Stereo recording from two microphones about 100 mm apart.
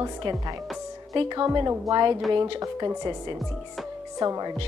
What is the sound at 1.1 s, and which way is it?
Speech, 40° right (ahead or behind).